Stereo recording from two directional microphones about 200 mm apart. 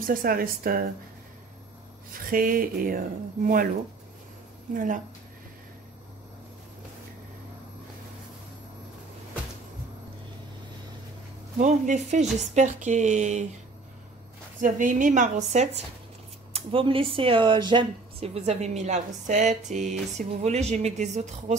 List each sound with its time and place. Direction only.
0.0 s speech: 45° right (ahead or behind)
2.1 s speech: 45° right (ahead or behind)
4.7 s speech: 40° right (ahead or behind)
11.5 s speech: 40° right (ahead or behind)
14.6 s speech: 40° right (ahead or behind)